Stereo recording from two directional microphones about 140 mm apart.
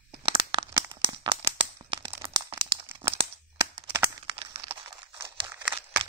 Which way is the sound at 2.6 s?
20° right (ahead or behind).